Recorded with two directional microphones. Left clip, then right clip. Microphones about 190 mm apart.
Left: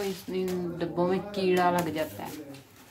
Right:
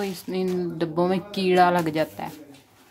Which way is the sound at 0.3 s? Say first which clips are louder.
Right 8 dB; 60° right (ahead or behind).